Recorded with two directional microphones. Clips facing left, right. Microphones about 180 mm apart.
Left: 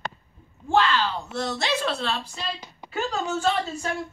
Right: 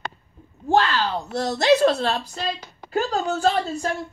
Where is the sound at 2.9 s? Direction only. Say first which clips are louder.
Right 4 dB; 35° right (ahead or behind).